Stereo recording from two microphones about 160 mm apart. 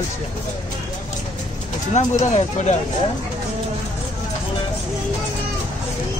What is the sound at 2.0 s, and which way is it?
Speech, 45° left (ahead or behind).